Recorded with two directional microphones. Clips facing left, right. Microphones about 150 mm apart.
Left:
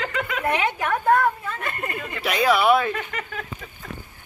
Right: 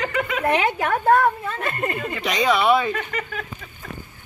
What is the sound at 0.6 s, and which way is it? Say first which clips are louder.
A woman's voice: right 2 dB; 35° right (ahead or behind).